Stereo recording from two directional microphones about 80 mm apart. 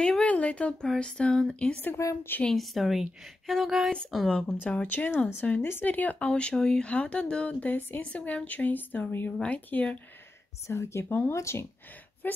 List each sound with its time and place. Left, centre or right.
0.0 s a sound: centre
0.8 s speech: centre
4.3 s speech: centre
4.8 s speech: left
10.7 s speech: left
12.2 s a woman's voice: left